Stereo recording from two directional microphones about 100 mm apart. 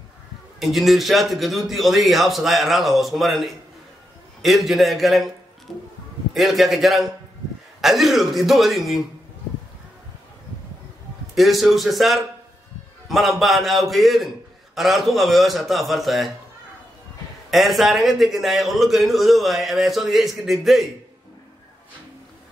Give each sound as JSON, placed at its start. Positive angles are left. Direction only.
{"t": 0.6, "sound": "a man's voice", "side_deg": 0}
{"t": 5.7, "sound": "music", "side_deg": 0}
{"t": 6.3, "sound": "a man's voice", "side_deg": 0}
{"t": 11.3, "sound": "a man's voice", "side_deg": 0}
{"t": 17.5, "sound": "a man's voice", "side_deg": 0}